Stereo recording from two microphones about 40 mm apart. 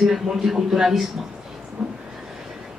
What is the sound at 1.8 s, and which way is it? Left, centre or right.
Speech, centre.